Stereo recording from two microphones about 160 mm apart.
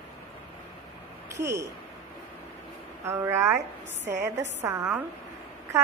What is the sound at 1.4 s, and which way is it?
Speech, 20° right (ahead or behind).